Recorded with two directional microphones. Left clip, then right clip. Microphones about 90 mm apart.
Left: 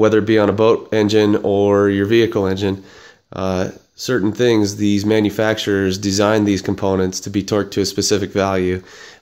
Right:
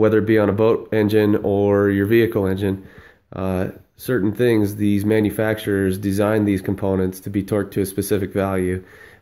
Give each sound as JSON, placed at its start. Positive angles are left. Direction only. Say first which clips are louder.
{"t": 0.0, "sound": "speech", "louder": "left 3 dB", "side_deg": 15}